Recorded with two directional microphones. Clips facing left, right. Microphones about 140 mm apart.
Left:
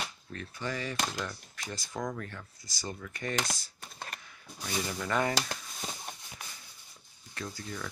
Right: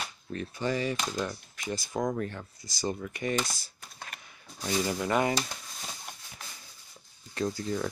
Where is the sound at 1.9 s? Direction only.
25° right (ahead or behind).